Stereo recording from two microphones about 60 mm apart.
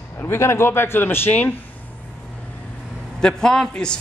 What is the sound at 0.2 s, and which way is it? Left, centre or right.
Speech, left.